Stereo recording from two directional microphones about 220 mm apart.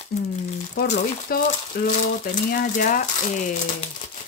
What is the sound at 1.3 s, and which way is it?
Speech, 45° left (ahead or behind).